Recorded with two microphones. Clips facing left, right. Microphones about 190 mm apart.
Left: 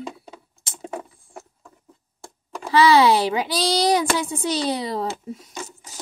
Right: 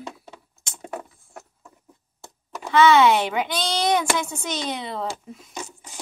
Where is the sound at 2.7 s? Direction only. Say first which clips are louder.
Left 1 dB; 35° left (ahead or behind).